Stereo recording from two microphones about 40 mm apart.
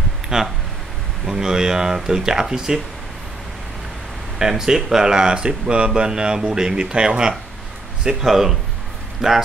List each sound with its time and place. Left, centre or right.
0.3 s speech: centre
4.4 s speech: centre
8.3 s speech: centre